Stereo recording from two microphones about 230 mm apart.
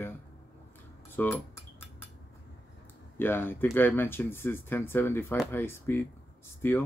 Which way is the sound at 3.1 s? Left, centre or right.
Centre.